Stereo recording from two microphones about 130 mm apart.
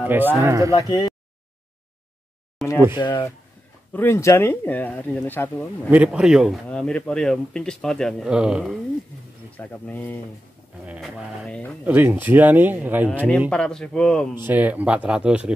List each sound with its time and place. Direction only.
0.0 s speech: 15° right (ahead or behind)
0.7 s speech: 30° left (ahead or behind)
2.6 s a sound: centre (ahead or behind)
3.0 s speech: 35° left (ahead or behind)
3.9 s speech: 20° left (ahead or behind)
5.9 s speech: 10° right (ahead or behind)
8.3 s speech: 5° right (ahead or behind)
9.6 s speech: 15° left (ahead or behind)
11.0 s speech: centre (ahead or behind)
11.8 s speech: 15° right (ahead or behind)
13.5 s speech: 5° left (ahead or behind)
14.3 s speech: 15° right (ahead or behind)